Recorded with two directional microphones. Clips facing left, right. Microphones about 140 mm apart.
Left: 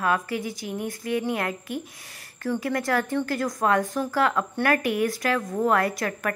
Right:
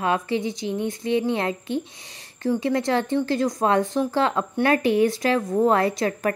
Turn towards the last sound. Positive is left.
turn(degrees=-25)  # may be behind; listen again after turning